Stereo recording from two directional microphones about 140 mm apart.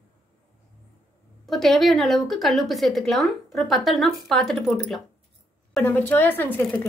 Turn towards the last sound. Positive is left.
turn(degrees=15)  # may be behind; listen again after turning